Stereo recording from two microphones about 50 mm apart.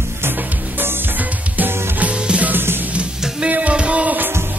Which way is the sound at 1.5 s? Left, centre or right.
Right.